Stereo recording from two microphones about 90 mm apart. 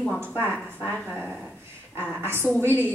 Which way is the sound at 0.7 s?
20° right (ahead or behind).